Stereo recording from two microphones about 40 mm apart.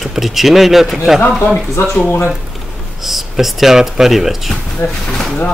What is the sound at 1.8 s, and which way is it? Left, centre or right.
Speech, left.